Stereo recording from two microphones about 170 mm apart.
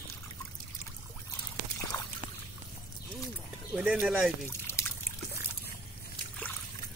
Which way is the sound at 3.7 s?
5° right (ahead or behind).